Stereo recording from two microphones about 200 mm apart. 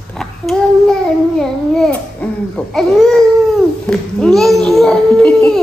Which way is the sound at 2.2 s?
5° left (ahead or behind).